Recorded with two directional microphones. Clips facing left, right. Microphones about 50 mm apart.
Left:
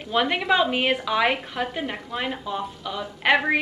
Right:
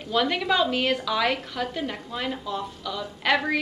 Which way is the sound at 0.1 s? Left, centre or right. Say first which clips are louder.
Left 2 dB; left.